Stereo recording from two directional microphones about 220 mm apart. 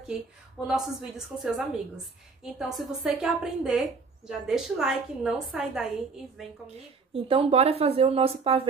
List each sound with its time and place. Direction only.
0.1 s a woman's voice: centre (ahead or behind)
7.2 s speech: 25° right (ahead or behind)